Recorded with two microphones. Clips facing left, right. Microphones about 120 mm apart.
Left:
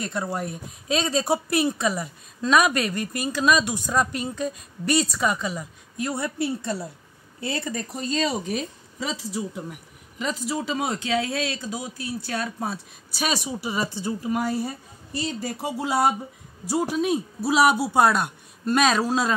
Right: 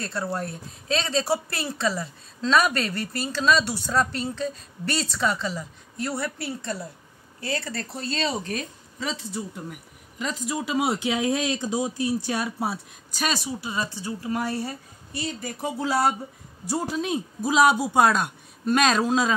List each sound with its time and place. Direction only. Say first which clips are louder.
0.0 s a woman's voice: left 1 dB; 15° left (ahead or behind); by 12.7 s 10° right (ahead or behind)
13.5 s a woman's voice: left 2 dB; 15° left (ahead or behind)